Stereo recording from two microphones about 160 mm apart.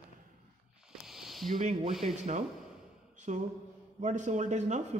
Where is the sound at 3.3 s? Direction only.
45° right (ahead or behind).